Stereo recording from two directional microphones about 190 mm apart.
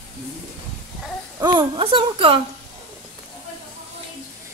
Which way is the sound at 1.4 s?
25° right (ahead or behind).